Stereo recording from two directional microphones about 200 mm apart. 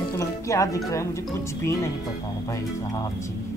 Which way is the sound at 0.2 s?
15° left (ahead or behind).